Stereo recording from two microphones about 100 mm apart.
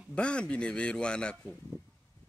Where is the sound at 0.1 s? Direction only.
10° left (ahead or behind).